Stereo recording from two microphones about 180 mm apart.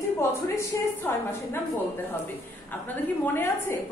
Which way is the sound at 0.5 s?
15° left (ahead or behind).